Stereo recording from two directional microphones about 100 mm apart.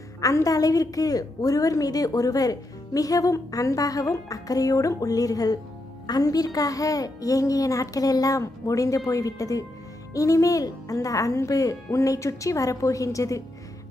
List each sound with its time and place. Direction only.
0.2 s a woman's voice: 35° left (ahead or behind)